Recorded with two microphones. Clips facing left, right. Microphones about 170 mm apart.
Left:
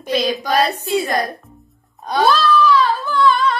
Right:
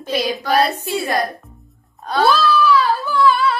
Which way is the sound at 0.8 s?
15° left (ahead or behind).